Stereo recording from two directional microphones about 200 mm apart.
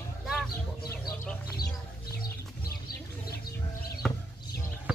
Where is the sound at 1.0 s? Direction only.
20° left (ahead or behind).